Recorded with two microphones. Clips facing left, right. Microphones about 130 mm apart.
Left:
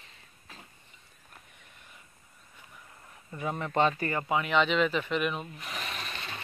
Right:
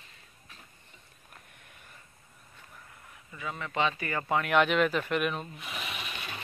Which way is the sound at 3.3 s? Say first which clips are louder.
Left 4 dB; 45° left (ahead or behind).